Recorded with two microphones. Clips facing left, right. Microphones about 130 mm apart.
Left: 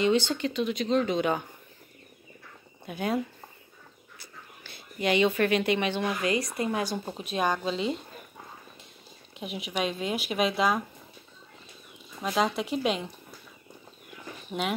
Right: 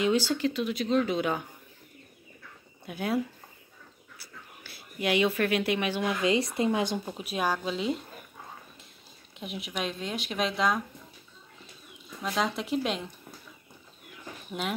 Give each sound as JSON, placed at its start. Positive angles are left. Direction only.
{"t": 0.0, "sound": "speech", "side_deg": -5}
{"t": 2.9, "sound": "speech", "side_deg": 0}
{"t": 4.2, "sound": "a sound", "side_deg": -5}
{"t": 6.2, "sound": "a woman's voice", "side_deg": -25}
{"t": 7.2, "sound": "speech", "side_deg": -5}
{"t": 9.4, "sound": "speech", "side_deg": 0}
{"t": 12.4, "sound": "speech", "side_deg": 0}